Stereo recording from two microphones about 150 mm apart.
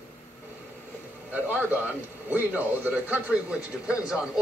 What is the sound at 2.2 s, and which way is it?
A man's voice, 10° right (ahead or behind).